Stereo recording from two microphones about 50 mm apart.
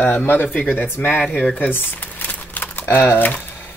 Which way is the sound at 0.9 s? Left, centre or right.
Left.